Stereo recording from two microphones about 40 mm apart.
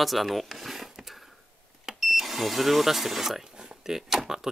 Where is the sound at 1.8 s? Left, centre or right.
Centre.